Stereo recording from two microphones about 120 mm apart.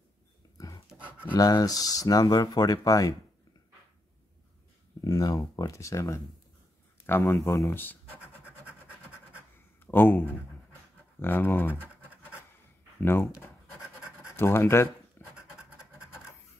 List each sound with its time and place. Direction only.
0.6 s dog: 30° left (ahead or behind)
0.8 s a sound: 10° right (ahead or behind)
1.3 s speech: 30° left (ahead or behind)
5.0 s speech: 30° left (ahead or behind)
9.8 s speech: 15° left (ahead or behind)
13.0 s speech: 20° left (ahead or behind)
14.3 s writing: 20° left (ahead or behind)